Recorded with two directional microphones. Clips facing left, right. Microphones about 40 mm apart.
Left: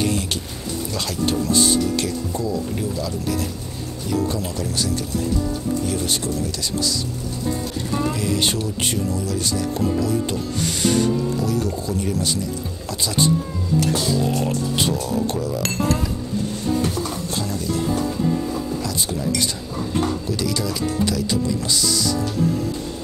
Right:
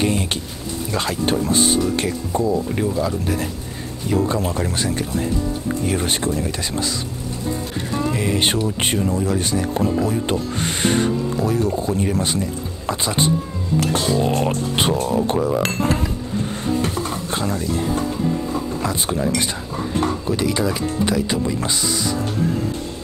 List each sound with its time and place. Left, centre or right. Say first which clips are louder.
0.0 s speech: right 2 dB; right
16.9 s bird: right 1 dB; right
18.5 s speech: right 2 dB; right